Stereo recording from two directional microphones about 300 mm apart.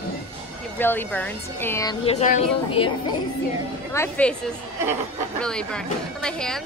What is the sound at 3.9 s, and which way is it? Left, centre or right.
Speech, centre.